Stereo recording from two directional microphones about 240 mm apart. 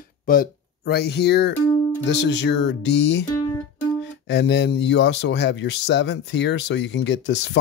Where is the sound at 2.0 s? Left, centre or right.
Left.